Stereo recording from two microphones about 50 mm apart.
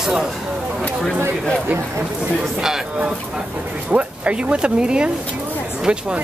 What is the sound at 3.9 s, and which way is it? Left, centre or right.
Speech, right.